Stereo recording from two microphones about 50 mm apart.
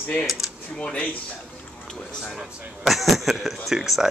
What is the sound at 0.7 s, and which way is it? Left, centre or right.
Speech, left.